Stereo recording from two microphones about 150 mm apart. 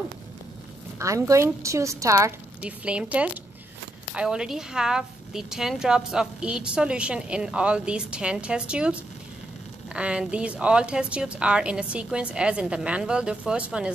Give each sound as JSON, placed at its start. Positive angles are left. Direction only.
{"t": 0.9, "sound": "a woman's voice", "side_deg": -20}
{"t": 2.6, "sound": "speech", "side_deg": -10}
{"t": 9.9, "sound": "speech", "side_deg": -5}